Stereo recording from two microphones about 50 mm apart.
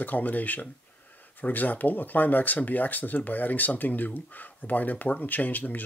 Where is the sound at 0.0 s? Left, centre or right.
Left.